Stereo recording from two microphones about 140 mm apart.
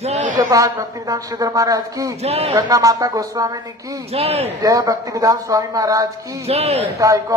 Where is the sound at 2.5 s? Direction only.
25° right (ahead or behind).